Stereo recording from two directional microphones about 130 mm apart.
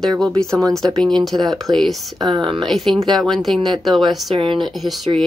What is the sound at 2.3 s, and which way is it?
Speech, 40° right (ahead or behind).